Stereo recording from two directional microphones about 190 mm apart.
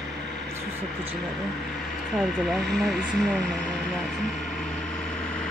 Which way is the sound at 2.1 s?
Centre (ahead or behind).